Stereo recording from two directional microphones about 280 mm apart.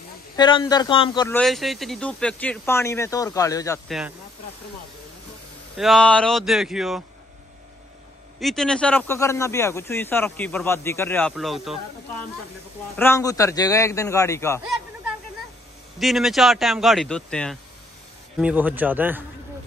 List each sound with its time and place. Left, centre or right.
0.4 s speech: centre
1.4 s speech: centre
5.8 s speech: centre
8.4 s speech: centre
12.9 s speech: centre
16.0 s speech: centre